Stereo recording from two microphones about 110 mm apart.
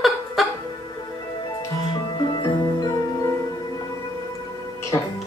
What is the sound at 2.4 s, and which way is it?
Music, 35° left (ahead or behind).